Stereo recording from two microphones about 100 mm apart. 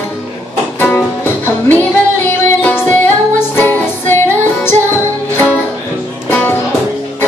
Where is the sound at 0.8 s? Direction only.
20° left (ahead or behind).